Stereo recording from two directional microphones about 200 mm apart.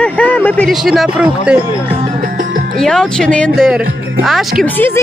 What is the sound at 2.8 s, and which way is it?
Speech, 5° left (ahead or behind).